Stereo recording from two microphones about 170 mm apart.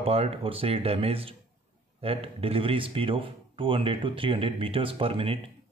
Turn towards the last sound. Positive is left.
turn(degrees=-35)  # may be behind; listen again after turning